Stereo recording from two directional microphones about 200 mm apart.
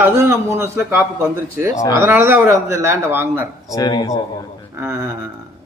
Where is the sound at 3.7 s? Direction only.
20° left (ahead or behind).